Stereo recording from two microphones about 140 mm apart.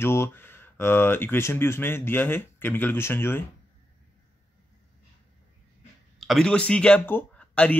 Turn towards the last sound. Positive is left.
turn(degrees=10)  # may be behind; listen again after turning